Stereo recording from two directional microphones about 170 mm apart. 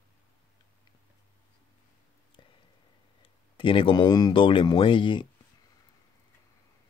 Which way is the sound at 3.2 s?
30° left (ahead or behind).